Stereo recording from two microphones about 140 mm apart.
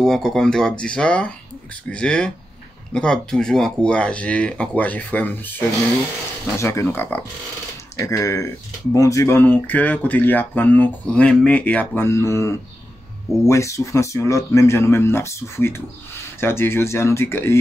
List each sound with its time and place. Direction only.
0.0 s speech: 5° left (ahead or behind)